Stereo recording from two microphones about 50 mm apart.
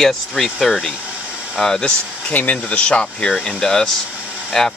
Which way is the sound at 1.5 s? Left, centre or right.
Centre.